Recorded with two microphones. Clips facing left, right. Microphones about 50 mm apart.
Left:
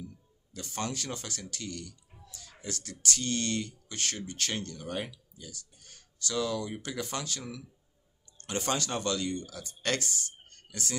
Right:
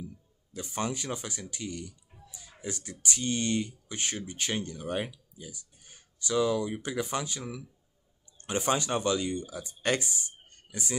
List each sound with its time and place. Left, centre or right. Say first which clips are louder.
0.0 s speech: right 2 dB; centre